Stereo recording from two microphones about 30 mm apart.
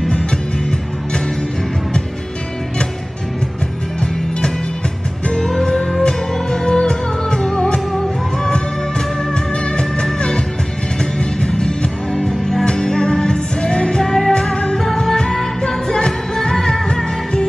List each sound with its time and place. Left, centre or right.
0.1 s music: left
5.4 s music: centre
9.3 s music: left
12.3 s music: centre
12.6 s music: left
14.5 s music: left